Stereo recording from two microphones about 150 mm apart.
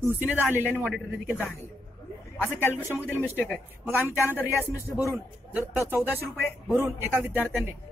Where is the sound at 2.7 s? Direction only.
15° right (ahead or behind).